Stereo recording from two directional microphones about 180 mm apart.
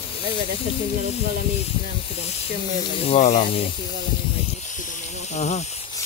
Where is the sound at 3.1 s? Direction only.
40° left (ahead or behind).